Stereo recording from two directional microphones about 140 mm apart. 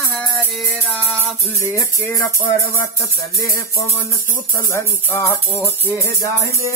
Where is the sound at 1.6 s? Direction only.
20° left (ahead or behind).